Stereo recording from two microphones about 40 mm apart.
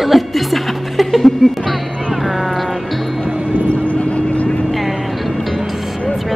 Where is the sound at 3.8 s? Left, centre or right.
Left.